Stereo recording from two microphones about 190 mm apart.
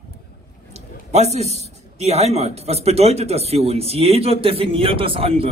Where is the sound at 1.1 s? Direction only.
35° right (ahead or behind).